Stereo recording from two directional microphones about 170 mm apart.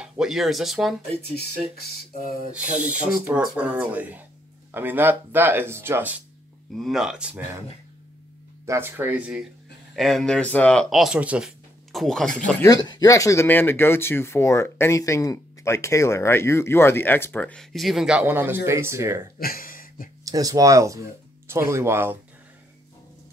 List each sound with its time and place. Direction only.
0.0 s speech: centre (ahead or behind)
2.5 s speech: 10° right (ahead or behind)
6.8 s speech: 5° right (ahead or behind)
8.6 s speech: 15° right (ahead or behind); by 12.6 s 5° left (ahead or behind)
12.6 s speech: 25° left (ahead or behind); by 19.2 s 15° right (ahead or behind)
19.3 s a sound: 60° left (ahead or behind)
20.2 s speech: 20° right (ahead or behind)